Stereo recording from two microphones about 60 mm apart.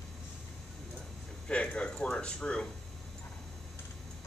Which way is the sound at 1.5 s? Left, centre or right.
Centre.